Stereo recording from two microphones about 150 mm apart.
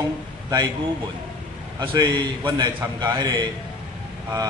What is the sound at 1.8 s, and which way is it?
A man's voice, 25° right (ahead or behind).